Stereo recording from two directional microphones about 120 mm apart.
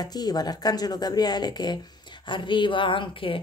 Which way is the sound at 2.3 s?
40° left (ahead or behind).